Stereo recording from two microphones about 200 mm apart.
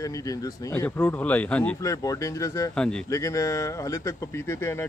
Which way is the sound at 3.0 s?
15° left (ahead or behind).